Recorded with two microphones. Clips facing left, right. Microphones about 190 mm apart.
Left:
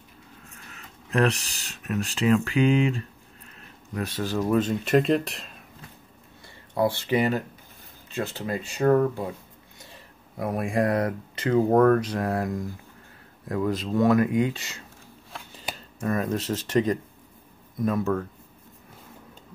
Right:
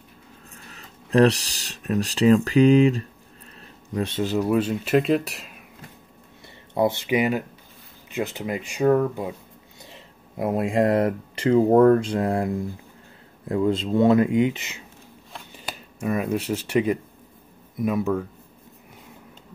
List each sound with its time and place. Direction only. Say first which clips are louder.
0.7 s speech: right 9 dB; 35° right (ahead or behind)
3.9 s speech: right 4 dB; 25° right (ahead or behind); by 5.5 s 5° right (ahead or behind)
6.7 s speech: right 2 dB; 20° right (ahead or behind)
9.8 s speech: right 4 dB; 20° right (ahead or behind)
16.0 s speech: right 2 dB; 10° right (ahead or behind)